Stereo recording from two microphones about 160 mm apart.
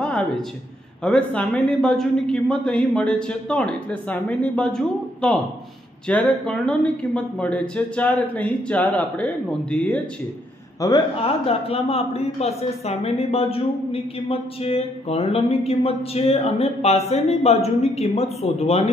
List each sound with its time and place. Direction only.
0.0 s a sound: 5° left (ahead or behind)
1.0 s a woman's voice: 10° left (ahead or behind)
10.8 s speech: 20° left (ahead or behind)
11.1 s a woman's voice: 35° left (ahead or behind)